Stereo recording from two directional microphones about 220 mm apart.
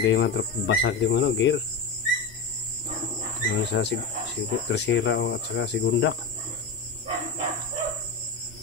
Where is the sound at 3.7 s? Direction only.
55° left (ahead or behind).